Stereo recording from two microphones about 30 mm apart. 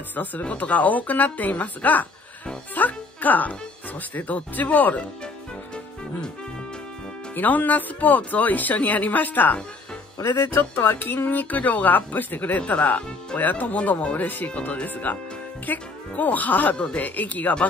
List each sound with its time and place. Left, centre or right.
0.1 s a woman's voice: left
7.3 s speech: left
10.7 s speech: left
13.8 s a woman's voice: left
15.1 s speech: left
16.9 s a woman's voice: left